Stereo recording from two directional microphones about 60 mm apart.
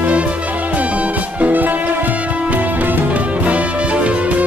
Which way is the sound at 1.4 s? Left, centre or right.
Right.